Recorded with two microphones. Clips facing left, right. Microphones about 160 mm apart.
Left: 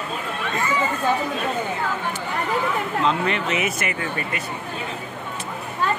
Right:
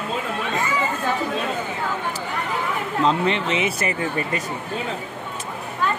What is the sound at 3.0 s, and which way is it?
Speech, 25° right (ahead or behind).